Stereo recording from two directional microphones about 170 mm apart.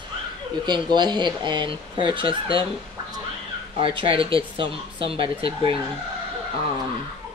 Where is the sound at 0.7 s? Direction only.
25° right (ahead or behind).